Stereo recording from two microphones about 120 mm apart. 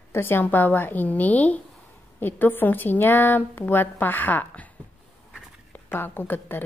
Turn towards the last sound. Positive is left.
turn(degrees=15)  # may be behind; listen again after turning